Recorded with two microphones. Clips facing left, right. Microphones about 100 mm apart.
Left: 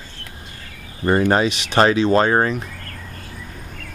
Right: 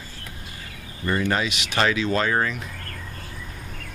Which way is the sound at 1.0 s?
40° left (ahead or behind).